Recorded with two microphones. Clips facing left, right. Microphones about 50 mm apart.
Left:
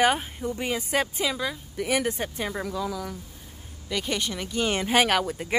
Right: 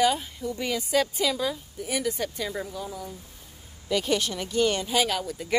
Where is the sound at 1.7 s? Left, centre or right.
Left.